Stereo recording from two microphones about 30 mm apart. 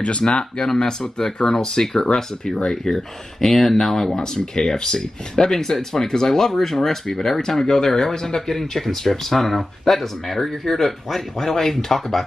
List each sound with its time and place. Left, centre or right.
0.2 s speech: left; by 4.2 s centre
4.2 s speech: left